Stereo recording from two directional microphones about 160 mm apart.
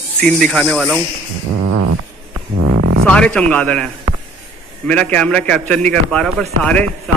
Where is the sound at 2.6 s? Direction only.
90° right.